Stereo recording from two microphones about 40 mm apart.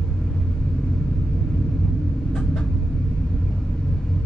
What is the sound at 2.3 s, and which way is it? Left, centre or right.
Vehicle, centre.